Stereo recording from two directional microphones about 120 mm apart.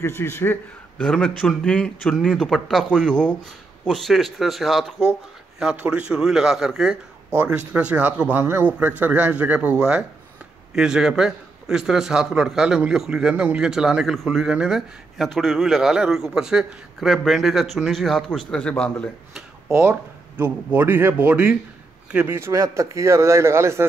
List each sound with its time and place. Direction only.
0.0 s a man's voice: 20° left (ahead or behind)
1.0 s a man's voice: 5° left (ahead or behind)
19.9 s a man's voice: 15° right (ahead or behind)